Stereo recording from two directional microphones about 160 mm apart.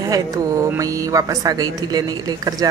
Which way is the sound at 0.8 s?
20° right (ahead or behind).